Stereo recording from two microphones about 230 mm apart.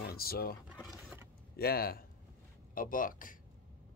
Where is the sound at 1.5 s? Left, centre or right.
Left.